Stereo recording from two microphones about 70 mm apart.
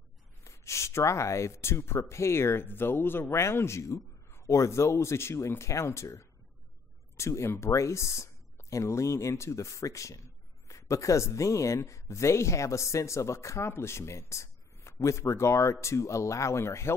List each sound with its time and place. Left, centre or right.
0.4 s speech: left